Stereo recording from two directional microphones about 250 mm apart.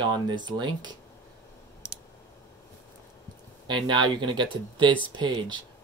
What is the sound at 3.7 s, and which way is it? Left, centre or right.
Speech, centre.